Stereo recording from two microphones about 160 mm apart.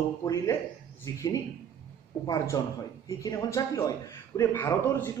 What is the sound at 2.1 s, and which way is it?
Speech, 10° left (ahead or behind).